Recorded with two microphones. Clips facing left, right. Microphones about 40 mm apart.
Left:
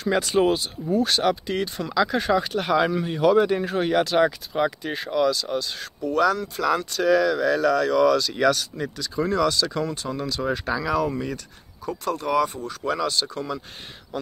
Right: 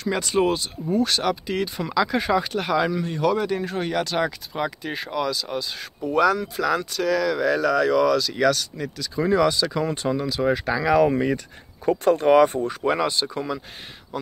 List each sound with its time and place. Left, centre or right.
0.0 s speech: centre
5.9 s speech: centre
6.5 s speech: centre
9.2 s speech: centre
10.8 s speech: centre
11.1 s speech: right
14.1 s speech: centre